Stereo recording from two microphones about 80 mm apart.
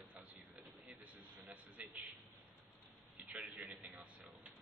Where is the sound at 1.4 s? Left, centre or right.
Centre.